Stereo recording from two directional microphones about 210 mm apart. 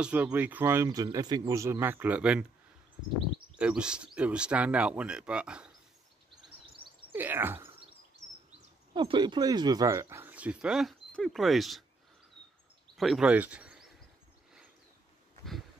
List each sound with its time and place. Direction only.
0.0 s speech: 5° right (ahead or behind)
3.5 s speech: 5° right (ahead or behind)
7.1 s a sound: 10° right (ahead or behind)
8.9 s speech: 20° right (ahead or behind); by 11.8 s centre (ahead or behind)
12.9 s speech: centre (ahead or behind)